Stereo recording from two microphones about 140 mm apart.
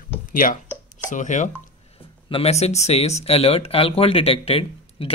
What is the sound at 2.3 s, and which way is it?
Speech, 50° left (ahead or behind).